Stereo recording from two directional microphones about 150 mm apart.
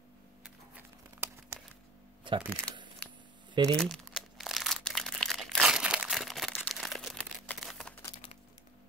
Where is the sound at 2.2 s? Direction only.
35° right (ahead or behind).